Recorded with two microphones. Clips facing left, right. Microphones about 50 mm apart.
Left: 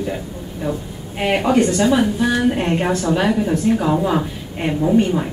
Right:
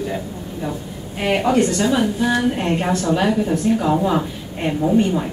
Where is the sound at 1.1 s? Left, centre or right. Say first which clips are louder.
Left 1 dB; centre.